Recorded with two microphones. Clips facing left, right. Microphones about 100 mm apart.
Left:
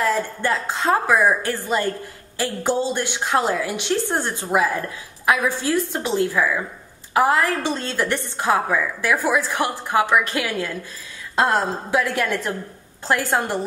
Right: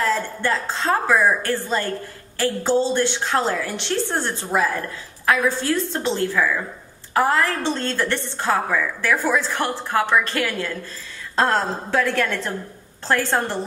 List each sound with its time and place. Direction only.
0.0 s a woman's voice: 15° left (ahead or behind)